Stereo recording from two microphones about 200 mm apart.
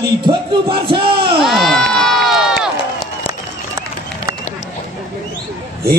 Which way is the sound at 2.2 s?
Centre (ahead or behind).